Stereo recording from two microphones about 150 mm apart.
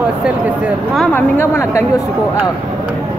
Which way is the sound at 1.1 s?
15° left (ahead or behind).